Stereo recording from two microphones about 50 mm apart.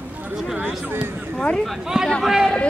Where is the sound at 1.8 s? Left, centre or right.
Centre.